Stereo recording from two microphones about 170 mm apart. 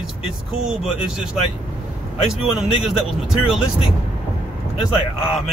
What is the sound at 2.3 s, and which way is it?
Speech, 5° right (ahead or behind).